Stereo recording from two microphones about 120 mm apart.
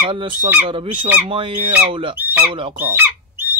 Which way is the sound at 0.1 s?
45° right (ahead or behind).